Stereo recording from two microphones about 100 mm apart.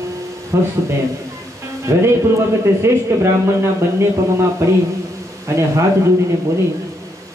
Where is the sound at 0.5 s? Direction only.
30° right (ahead or behind).